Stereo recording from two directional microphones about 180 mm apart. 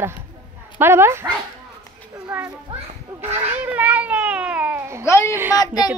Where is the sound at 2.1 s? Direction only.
10° right (ahead or behind).